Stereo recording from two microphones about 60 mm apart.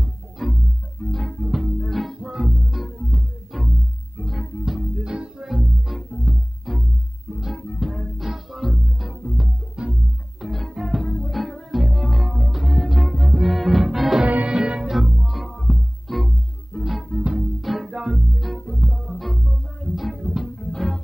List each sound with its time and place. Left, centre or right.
0.4 s music: centre
2.2 s music: centre
10.4 s music: centre
14.2 s music: right
14.9 s music: centre